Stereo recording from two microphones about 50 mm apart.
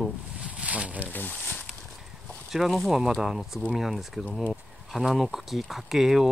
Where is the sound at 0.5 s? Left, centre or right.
Right.